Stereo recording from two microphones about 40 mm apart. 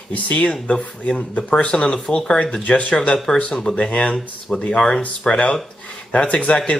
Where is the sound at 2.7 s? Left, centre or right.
Left.